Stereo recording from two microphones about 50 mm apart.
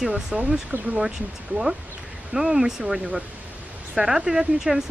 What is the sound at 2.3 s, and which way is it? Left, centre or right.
Speech, centre.